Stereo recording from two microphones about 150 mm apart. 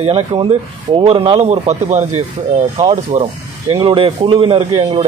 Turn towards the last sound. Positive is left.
turn(degrees=-40)  # may be behind; listen again after turning